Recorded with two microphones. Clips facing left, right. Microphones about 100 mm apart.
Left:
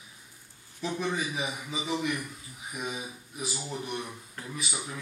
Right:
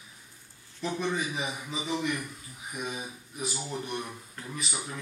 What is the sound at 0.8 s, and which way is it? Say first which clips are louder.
Speech: even; centre (ahead or behind).